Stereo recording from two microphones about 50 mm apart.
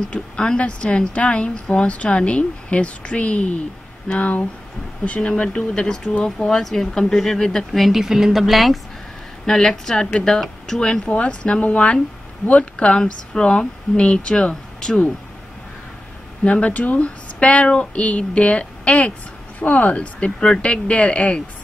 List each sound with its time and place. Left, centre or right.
0.1 s speech: left
5.3 s speech: centre
6.0 s speech: left
6.4 s speech: centre
7.8 s speech: centre
9.5 s speech: centre
16.4 s speech: left